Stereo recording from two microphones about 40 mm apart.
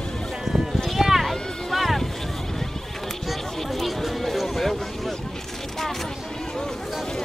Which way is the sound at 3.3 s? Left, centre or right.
Centre.